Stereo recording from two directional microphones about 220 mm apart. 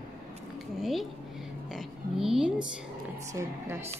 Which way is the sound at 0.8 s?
Centre (ahead or behind).